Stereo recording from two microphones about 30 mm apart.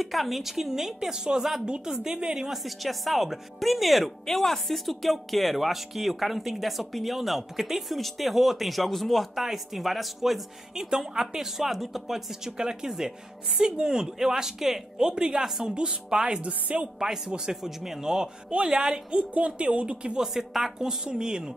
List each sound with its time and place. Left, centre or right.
0.0 s speech: centre
1.1 s speech: right
2.5 s speech: centre
4.3 s speech: centre
9.3 s speech: centre
10.7 s speech: centre
16.4 s a woman's voice: right
17.0 s speech: centre
18.5 s a woman's voice: right
18.8 s speech: right
19.4 s speech: right
20.2 s speech: centre; by 21.5 s right